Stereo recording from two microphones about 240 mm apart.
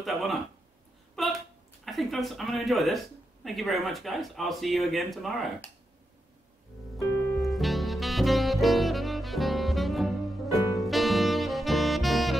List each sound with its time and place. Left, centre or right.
0.0 s speech: centre
1.2 s a sound: centre
1.9 s speech: centre
7.3 s saxophone: centre